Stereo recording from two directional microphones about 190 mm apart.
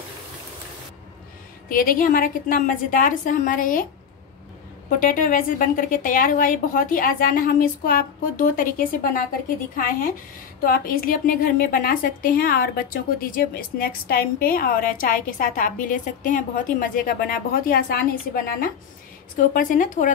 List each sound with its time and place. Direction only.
1.7 s a woman's voice: 45° left (ahead or behind)
5.0 s a woman's voice: 45° left (ahead or behind)